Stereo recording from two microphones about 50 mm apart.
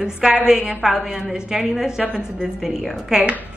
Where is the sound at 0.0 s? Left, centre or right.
Centre.